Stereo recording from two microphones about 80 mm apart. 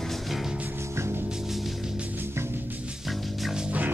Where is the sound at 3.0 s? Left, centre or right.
Centre.